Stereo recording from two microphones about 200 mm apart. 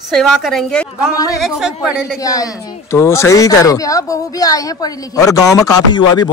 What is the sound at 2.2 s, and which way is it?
Speech, 15° left (ahead or behind).